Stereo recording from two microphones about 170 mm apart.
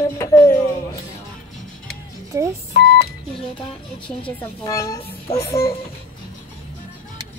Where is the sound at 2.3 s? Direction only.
15° right (ahead or behind).